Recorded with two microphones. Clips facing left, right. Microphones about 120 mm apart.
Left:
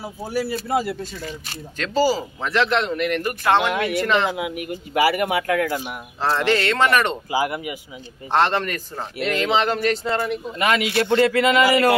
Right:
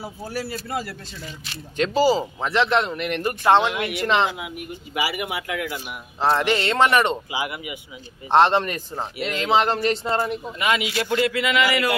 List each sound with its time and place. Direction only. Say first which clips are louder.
0.3 s speech: left 7 dB; 15° left (ahead or behind)
1.8 s speech: right 1 dB; 20° right (ahead or behind)
4.3 s speech: left 6 dB; 60° left (ahead or behind)
6.2 s speech: even; 20° right (ahead or behind)
7.2 s a sound: left 6 dB; 40° left (ahead or behind)
8.3 s speech: right 3 dB; 20° right (ahead or behind)
10.6 s speech: left 3 dB; 50° left (ahead or behind)
11.1 s a sound: left 5 dB; 35° left (ahead or behind)